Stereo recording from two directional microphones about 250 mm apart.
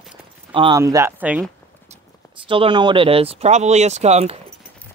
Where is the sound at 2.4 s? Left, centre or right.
Centre.